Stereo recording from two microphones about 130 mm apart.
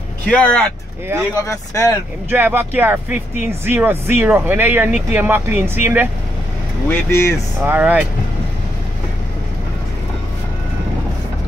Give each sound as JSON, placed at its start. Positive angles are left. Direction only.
{"t": 0.3, "sound": "speech", "side_deg": 10}
{"t": 1.5, "sound": "speech", "side_deg": 25}
{"t": 2.3, "sound": "speech", "side_deg": -15}
{"t": 6.9, "sound": "speech", "side_deg": 20}
{"t": 7.6, "sound": "speech", "side_deg": -10}